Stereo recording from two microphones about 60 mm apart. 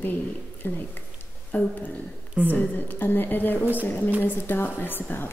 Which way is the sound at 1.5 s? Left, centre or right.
Left.